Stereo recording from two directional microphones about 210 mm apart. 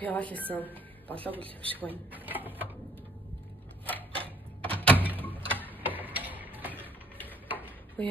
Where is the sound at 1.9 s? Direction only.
10° right (ahead or behind).